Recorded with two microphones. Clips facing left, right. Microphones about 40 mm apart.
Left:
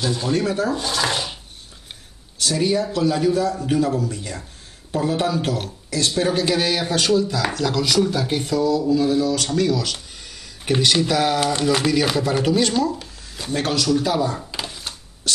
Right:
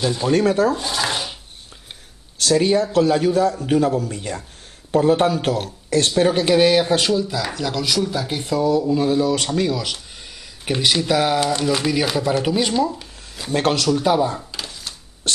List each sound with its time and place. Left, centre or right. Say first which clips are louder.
0.0 s speech: right 2 dB; right
0.3 s a man's voice: right 5 dB; right
0.7 s a sound: left 1 dB; centre
2.4 s a man's voice: right 4 dB; right
6.1 s speech: right 4 dB; right
6.8 s speech: right 1 dB; centre
8.5 s a man's voice: right 2 dB; right
10.6 s speech: left 1 dB; centre
11.5 s speech: left 1 dB; centre
13.5 s a man's voice: right 3 dB; right
13.8 s speech: right 2 dB; right
14.5 s a sound: left 2 dB; centre
15.3 s dog: right 1 dB; right